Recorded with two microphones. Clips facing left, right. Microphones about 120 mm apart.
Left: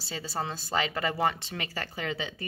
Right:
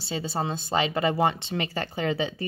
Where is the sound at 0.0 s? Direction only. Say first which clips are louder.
Right 5 dB; 20° right (ahead or behind).